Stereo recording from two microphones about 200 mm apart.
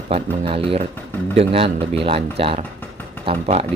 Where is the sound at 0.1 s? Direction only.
25° right (ahead or behind).